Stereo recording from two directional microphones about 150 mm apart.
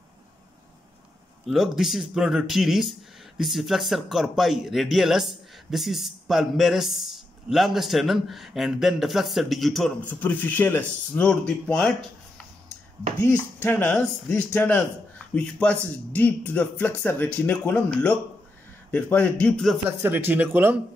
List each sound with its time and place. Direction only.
1.5 s speech: centre (ahead or behind)
13.2 s speech: 15° left (ahead or behind)
20.0 s speech: 15° right (ahead or behind)